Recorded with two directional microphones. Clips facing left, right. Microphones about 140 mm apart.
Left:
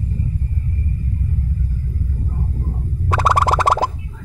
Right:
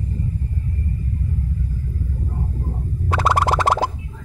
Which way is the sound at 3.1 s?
40° left (ahead or behind).